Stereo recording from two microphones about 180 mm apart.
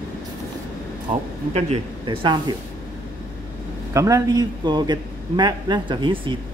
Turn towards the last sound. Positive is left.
turn(degrees=-25)  # may be behind; listen again after turning